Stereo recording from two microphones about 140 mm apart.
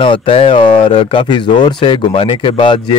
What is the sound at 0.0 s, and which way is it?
Speech, 40° left (ahead or behind).